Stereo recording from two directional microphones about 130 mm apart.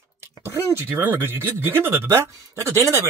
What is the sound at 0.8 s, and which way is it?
Speech, 15° right (ahead or behind).